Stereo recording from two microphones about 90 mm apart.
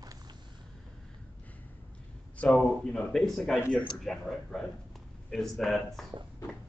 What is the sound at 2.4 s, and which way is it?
Speech, 10° left (ahead or behind).